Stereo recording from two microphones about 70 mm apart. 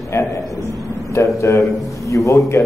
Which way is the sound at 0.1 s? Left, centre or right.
Left.